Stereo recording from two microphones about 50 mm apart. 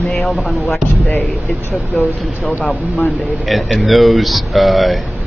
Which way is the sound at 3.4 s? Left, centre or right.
Centre.